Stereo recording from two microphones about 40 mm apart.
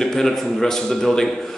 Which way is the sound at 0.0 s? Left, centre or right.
Centre.